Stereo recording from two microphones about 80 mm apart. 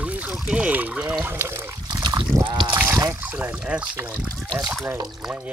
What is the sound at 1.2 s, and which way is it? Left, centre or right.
Speech, right.